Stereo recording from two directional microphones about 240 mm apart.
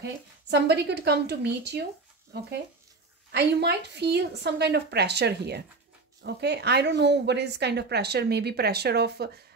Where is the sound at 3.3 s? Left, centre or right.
Right.